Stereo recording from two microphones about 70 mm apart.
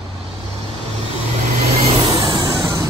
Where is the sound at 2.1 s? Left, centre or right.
Right.